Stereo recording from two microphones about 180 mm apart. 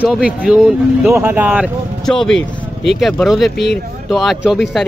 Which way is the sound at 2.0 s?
5° left (ahead or behind).